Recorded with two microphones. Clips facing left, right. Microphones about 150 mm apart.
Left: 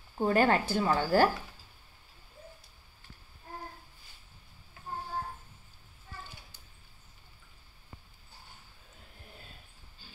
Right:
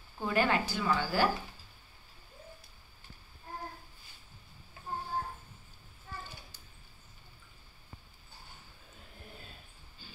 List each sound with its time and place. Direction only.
0.2 s speech: 45° left (ahead or behind)